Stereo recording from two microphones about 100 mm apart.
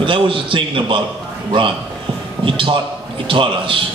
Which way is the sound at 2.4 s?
60° right (ahead or behind).